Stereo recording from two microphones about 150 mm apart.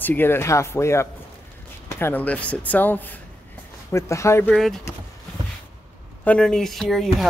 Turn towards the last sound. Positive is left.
turn(degrees=0)  # may be behind; listen again after turning